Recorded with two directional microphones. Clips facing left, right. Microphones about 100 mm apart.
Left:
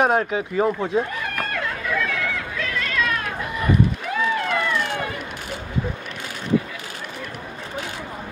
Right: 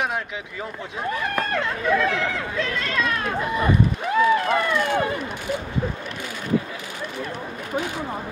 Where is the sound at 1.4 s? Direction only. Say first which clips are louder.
Right 1 dB; 30° right (ahead or behind).